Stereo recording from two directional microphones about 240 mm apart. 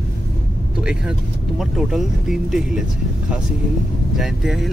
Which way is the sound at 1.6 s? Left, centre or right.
Centre.